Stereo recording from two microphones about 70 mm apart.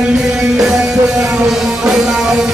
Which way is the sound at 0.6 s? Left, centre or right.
Centre.